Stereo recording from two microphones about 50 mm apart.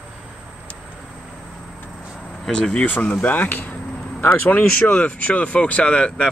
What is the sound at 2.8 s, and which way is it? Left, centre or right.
Speech, left.